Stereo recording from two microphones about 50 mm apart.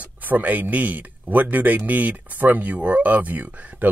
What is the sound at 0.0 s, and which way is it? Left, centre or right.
Speech, right.